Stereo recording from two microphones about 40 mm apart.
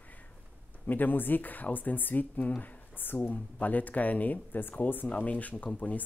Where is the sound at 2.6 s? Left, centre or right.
Left.